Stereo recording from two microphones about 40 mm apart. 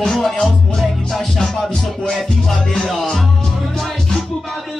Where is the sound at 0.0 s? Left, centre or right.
Centre.